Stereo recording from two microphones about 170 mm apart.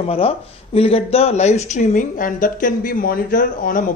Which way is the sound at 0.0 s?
35° left (ahead or behind).